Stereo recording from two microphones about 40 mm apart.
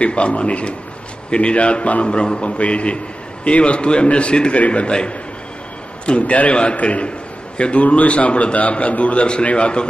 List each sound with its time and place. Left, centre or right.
0.0 s a man's voice: left